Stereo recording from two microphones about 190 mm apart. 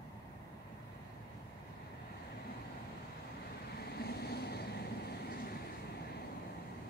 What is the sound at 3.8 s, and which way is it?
Vehicle, 55° left (ahead or behind).